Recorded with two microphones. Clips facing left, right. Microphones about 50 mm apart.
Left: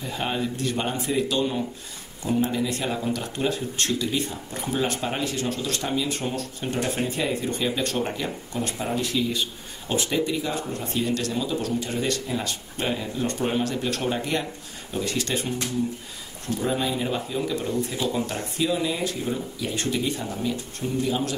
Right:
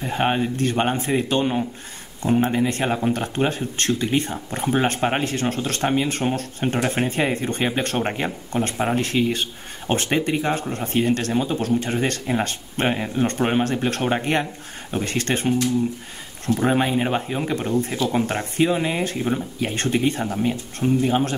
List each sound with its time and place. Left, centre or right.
0.0 s speech: right
17.9 s speech: right
18.2 s speech: right